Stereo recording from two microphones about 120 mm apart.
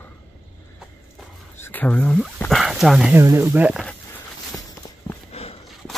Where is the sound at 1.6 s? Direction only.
15° left (ahead or behind).